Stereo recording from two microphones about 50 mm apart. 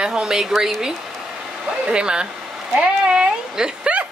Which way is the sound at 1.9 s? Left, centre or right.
Centre.